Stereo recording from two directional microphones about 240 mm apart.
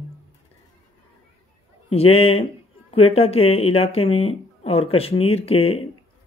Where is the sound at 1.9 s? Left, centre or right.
Left.